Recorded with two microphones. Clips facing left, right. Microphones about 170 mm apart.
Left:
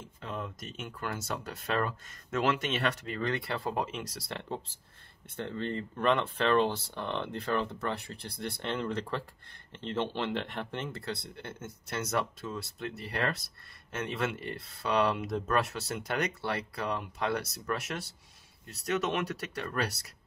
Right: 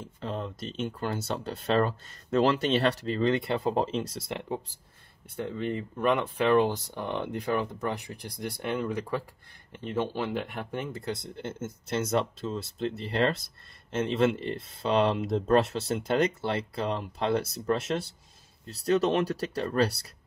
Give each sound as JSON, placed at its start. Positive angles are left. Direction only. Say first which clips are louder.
{"t": 0.2, "sound": "speech", "louder": "right 5 dB", "side_deg": -30}
{"t": 3.2, "sound": "speech", "louder": "right 7 dB", "side_deg": -20}
{"t": 12.1, "sound": "speech", "louder": "right 2 dB", "side_deg": -25}